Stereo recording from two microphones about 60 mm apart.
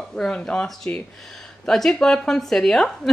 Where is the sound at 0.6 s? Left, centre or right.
Centre.